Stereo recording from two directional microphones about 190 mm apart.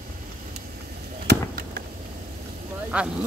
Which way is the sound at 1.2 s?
55° right (ahead or behind).